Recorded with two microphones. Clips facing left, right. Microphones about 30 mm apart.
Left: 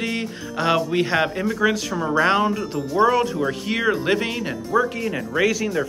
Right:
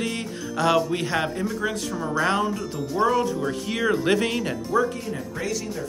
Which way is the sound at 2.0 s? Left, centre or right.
Left.